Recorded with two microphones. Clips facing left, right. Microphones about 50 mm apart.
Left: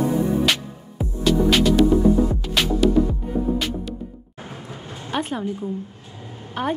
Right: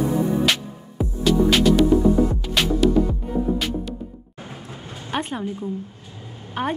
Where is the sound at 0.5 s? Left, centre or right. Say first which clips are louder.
Even; centre.